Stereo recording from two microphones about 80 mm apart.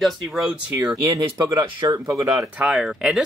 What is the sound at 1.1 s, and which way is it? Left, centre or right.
Speech, right.